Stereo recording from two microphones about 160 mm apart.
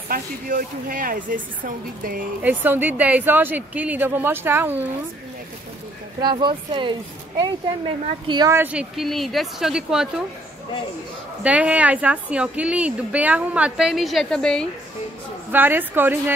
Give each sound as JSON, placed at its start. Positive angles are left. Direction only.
{"t": 0.1, "sound": "a woman's voice", "side_deg": -60}
{"t": 2.4, "sound": "a woman's voice", "side_deg": -10}
{"t": 6.2, "sound": "speech", "side_deg": -30}
{"t": 8.5, "sound": "a woman's voice", "side_deg": -10}
{"t": 11.4, "sound": "a woman's voice", "side_deg": -10}
{"t": 15.5, "sound": "a woman's voice", "side_deg": -10}